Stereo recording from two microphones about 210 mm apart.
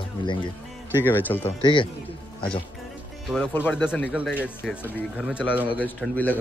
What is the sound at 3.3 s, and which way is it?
Speech, 10° left (ahead or behind).